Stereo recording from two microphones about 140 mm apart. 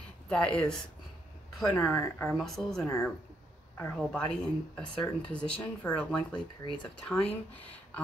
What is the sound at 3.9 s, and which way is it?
Speech, 5° left (ahead or behind).